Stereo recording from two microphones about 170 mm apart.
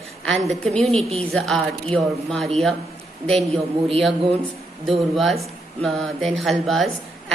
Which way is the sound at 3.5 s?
35° right (ahead or behind).